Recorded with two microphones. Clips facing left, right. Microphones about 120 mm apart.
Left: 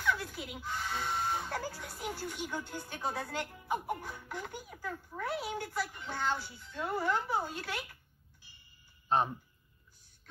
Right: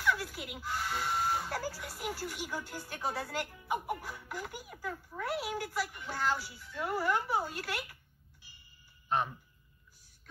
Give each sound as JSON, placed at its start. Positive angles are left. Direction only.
{"t": 0.0, "sound": "a sound", "side_deg": -5}
{"t": 0.7, "sound": "a woman's voice", "side_deg": -5}
{"t": 9.1, "sound": "speech", "side_deg": 30}